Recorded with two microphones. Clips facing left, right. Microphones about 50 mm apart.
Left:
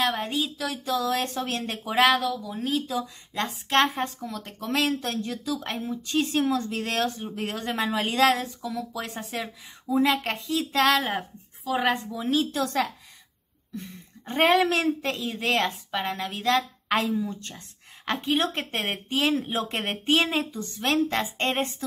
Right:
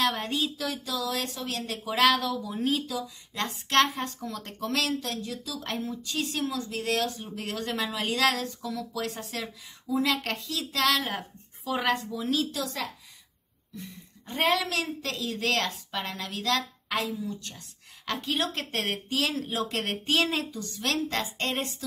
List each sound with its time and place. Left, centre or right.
0.0 s speech: centre
0.8 s speech: left
1.9 s speech: centre
2.4 s speech: centre
2.9 s speech: left
3.4 s speech: centre
3.8 s speech: left
4.3 s speech: centre
4.6 s speech: left
5.5 s speech: centre
11.7 s speech: centre
13.7 s speech: left